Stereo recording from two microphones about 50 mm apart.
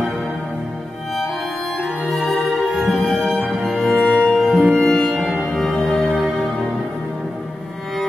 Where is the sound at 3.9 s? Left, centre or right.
Left.